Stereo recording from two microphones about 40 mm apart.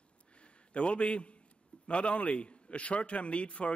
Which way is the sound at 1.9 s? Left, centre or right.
Left.